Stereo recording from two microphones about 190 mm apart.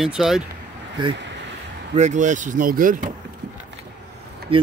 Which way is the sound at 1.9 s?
40° right (ahead or behind).